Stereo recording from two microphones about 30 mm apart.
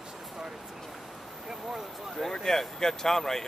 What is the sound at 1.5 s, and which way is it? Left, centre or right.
Speech, centre.